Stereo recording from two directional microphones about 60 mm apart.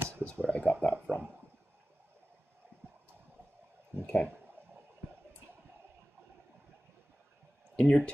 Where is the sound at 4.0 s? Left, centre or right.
Centre.